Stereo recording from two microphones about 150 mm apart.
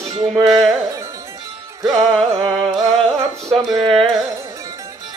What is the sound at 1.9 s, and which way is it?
Speech, centre (ahead or behind).